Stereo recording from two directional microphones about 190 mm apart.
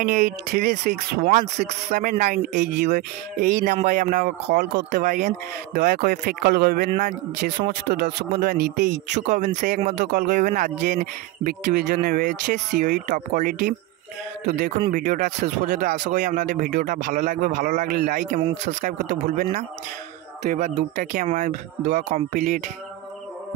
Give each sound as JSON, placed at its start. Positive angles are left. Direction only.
{"t": 0.0, "sound": "speech", "side_deg": -50}
{"t": 1.2, "sound": "speech", "side_deg": -40}
{"t": 7.6, "sound": "speech", "side_deg": -35}
{"t": 7.9, "sound": "speech", "side_deg": -50}
{"t": 9.1, "sound": "speech", "side_deg": -40}
{"t": 14.9, "sound": "speech", "side_deg": -45}